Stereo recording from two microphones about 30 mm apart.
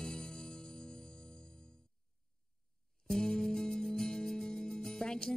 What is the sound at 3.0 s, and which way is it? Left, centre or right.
Music, centre.